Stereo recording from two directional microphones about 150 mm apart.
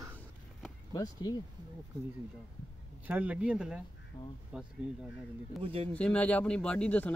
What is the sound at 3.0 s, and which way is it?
Speech, 10° right (ahead or behind).